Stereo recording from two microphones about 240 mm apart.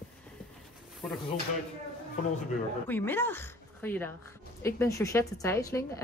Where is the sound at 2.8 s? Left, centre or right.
Centre.